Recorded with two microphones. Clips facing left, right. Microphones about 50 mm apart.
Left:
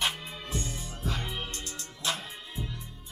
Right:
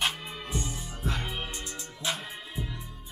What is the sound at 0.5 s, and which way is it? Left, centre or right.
Music, centre.